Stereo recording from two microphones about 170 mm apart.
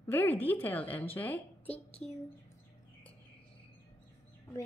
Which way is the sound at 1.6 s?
35° left (ahead or behind).